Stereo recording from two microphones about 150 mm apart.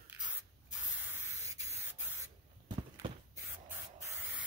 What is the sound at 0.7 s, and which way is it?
Spray, 10° right (ahead or behind).